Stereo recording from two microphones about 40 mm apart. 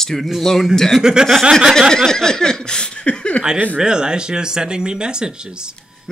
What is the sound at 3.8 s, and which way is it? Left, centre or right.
Speech, right.